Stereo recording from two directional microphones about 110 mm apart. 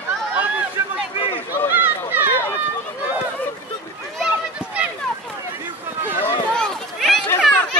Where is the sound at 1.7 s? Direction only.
15° right (ahead or behind).